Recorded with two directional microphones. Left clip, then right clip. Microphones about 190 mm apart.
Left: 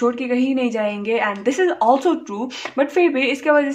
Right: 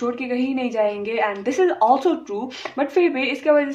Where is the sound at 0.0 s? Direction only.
25° left (ahead or behind).